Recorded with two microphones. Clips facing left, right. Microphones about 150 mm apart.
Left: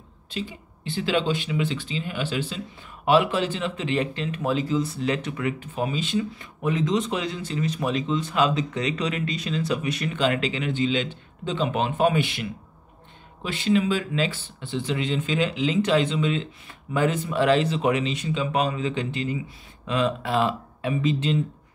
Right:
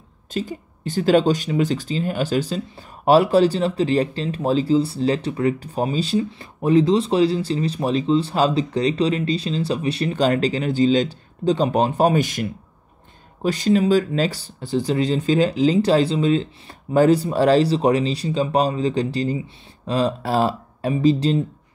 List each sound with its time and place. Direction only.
0.3 s speech: 45° right (ahead or behind)